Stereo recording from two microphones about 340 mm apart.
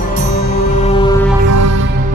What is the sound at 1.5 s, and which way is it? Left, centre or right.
Music, right.